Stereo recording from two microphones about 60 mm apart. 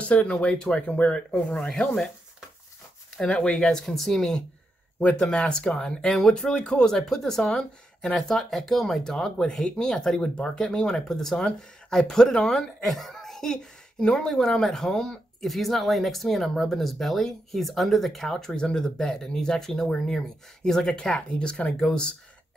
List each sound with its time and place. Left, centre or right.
0.0 s speech: left
1.7 s speech: centre
3.2 s speech: centre